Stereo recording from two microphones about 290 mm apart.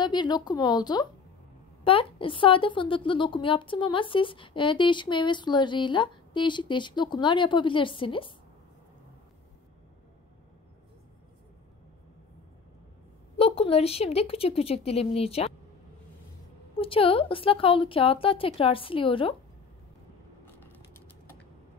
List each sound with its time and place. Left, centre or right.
0.0 s a woman's voice: centre
13.4 s a woman's voice: left
16.7 s a woman's voice: centre